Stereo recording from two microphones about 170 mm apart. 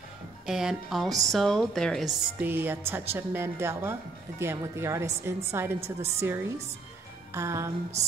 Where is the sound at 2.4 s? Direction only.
10° right (ahead or behind).